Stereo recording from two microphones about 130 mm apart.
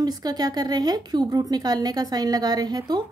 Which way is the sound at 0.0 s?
30° right (ahead or behind).